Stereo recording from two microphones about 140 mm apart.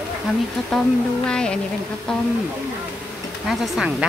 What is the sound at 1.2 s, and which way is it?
Speech, 5° left (ahead or behind).